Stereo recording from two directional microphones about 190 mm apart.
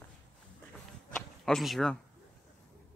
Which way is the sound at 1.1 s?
Centre (ahead or behind).